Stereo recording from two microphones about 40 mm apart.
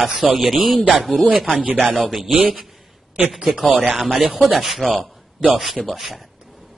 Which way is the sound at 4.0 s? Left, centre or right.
Centre.